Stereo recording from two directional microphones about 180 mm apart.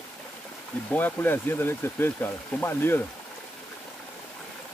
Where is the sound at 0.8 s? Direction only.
10° left (ahead or behind).